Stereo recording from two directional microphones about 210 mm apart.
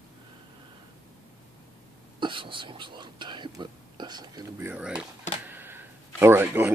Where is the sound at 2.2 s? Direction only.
25° right (ahead or behind).